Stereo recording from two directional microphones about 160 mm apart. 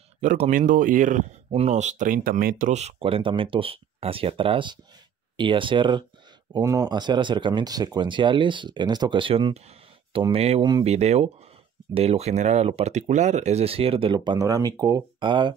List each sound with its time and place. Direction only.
0.5 s speech: 55° right (ahead or behind); by 15.5 s 30° right (ahead or behind)